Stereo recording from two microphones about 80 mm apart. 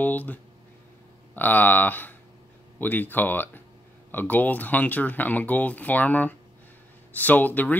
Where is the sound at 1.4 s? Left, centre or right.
Left.